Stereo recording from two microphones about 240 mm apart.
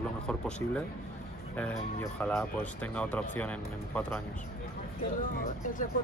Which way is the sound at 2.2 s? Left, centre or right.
Centre.